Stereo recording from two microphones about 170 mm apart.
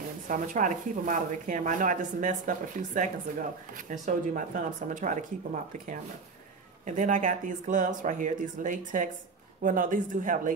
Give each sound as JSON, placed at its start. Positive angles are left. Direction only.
{"t": 0.3, "sound": "speech", "side_deg": -50}
{"t": 7.0, "sound": "speech", "side_deg": -50}